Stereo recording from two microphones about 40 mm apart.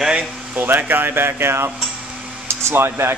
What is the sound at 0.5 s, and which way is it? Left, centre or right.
Speech, right.